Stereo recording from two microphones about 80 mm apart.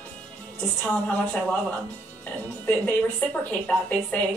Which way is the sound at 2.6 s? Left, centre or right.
Centre.